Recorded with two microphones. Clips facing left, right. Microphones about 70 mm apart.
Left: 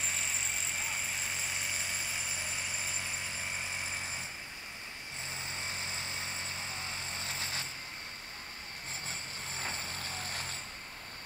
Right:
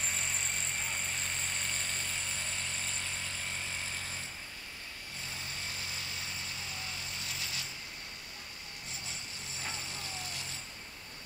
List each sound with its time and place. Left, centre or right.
0.0 s vehicle: centre
5.3 s vehicle: left
9.0 s vehicle: left